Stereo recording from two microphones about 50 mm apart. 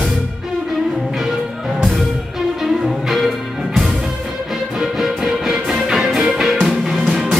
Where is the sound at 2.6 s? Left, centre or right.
Centre.